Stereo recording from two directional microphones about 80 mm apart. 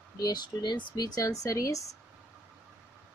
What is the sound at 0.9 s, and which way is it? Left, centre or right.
Speech, left.